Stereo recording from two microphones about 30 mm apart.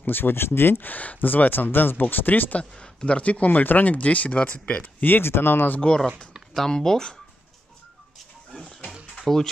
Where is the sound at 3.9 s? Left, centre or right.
Left.